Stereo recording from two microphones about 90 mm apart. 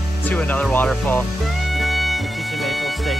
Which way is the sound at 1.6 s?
Centre (ahead or behind).